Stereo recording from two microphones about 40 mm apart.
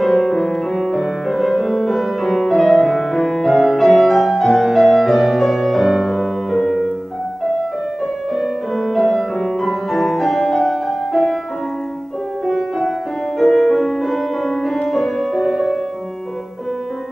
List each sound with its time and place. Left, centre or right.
0.0 s music: centre
6.1 s music: centre
8.4 s music: centre
12.4 s music: centre